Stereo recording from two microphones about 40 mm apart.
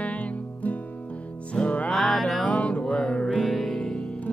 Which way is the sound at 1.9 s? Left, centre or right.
Centre.